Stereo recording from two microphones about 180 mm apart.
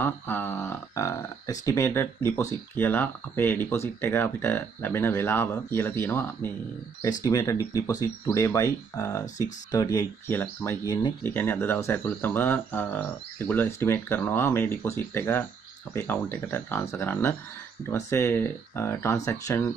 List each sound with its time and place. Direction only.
0.0 s speech: 10° left (ahead or behind)